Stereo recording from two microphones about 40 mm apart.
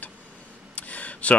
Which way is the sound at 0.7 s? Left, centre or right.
Left.